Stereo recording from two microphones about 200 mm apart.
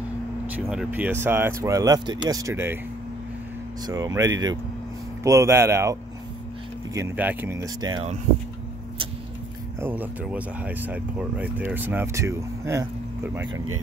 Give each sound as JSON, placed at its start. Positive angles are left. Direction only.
{"t": 0.7, "sound": "speech", "side_deg": -5}
{"t": 3.8, "sound": "speech", "side_deg": -15}
{"t": 9.8, "sound": "speech", "side_deg": -10}